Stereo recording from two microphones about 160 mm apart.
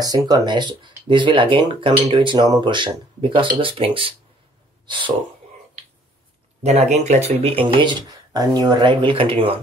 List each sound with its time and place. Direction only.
0.0 s speech: 25° right (ahead or behind)
6.6 s speech: 45° right (ahead or behind)